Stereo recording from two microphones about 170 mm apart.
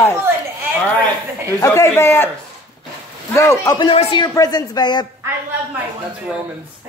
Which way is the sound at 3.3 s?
20° left (ahead or behind).